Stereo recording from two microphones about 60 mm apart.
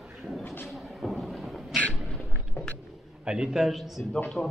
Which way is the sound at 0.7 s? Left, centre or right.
Centre.